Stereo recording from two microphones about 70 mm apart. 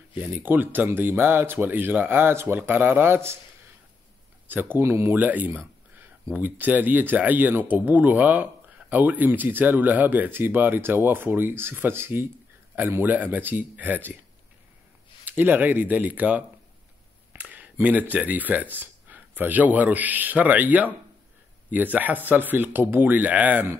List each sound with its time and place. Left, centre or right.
0.1 s speech: right
4.5 s speech: right
5.1 s speech: right
15.2 s speech: right